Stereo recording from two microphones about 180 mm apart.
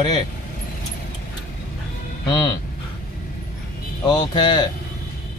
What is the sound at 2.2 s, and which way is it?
Speech, 25° left (ahead or behind).